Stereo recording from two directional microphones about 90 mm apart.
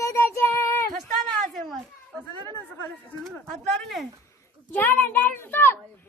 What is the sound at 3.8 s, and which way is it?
Speech, centre (ahead or behind).